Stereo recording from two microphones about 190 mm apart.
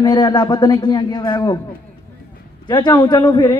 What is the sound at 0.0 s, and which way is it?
Speech, 25° left (ahead or behind).